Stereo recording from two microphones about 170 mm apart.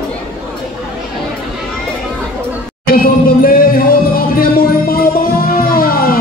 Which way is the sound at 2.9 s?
60° left (ahead or behind).